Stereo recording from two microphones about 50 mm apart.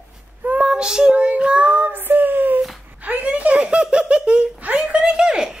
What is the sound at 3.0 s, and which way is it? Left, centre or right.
Child singing, right.